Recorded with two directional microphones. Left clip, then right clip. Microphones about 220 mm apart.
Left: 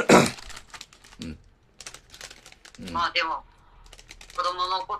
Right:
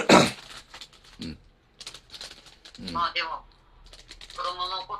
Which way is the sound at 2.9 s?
50° left (ahead or behind).